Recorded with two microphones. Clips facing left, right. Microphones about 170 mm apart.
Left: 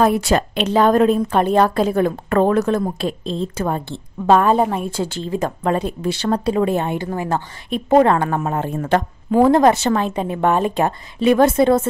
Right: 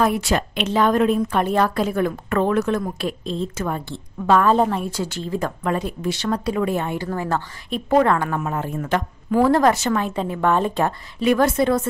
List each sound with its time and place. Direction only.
0.0 s a woman's voice: 40° left (ahead or behind)
4.5 s a woman's voice: 15° left (ahead or behind)